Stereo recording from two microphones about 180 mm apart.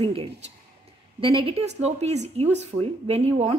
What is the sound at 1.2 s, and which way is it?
A woman's voice, 30° right (ahead or behind).